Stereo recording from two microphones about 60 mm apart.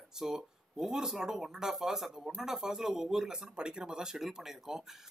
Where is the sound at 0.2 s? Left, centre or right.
Centre.